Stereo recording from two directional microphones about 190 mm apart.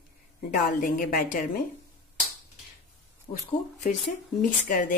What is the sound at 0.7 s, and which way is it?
Speech, 45° left (ahead or behind).